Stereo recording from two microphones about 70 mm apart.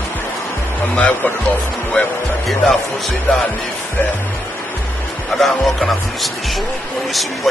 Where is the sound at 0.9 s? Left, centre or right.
Left.